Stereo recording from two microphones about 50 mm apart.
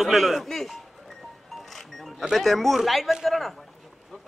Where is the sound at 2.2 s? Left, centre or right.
Centre.